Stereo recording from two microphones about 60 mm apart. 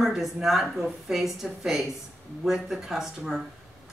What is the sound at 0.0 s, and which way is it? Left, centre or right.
A woman's voice, centre.